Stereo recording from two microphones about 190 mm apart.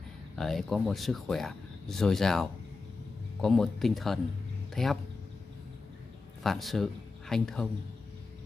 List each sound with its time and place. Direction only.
0.4 s speech: centre (ahead or behind)
6.4 s speech: centre (ahead or behind)